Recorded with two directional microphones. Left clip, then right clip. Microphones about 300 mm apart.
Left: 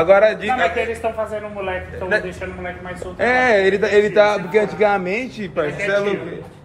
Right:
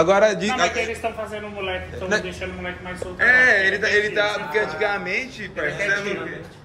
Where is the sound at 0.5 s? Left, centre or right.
Centre.